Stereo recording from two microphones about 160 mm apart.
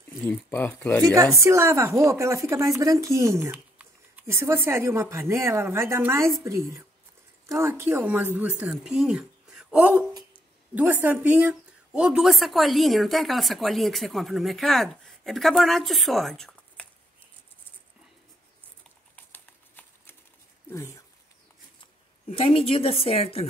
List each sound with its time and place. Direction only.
0.3 s speech: 10° left (ahead or behind)
1.0 s speech: 20° right (ahead or behind); by 16.8 s 5° left (ahead or behind)
19.1 s a sound: 10° left (ahead or behind)
22.3 s a woman's voice: 35° left (ahead or behind)